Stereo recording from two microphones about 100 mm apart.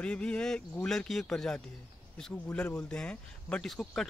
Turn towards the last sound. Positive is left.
turn(degrees=5)  # may be behind; listen again after turning